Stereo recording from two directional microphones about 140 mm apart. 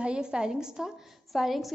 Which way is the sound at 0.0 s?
5° right (ahead or behind).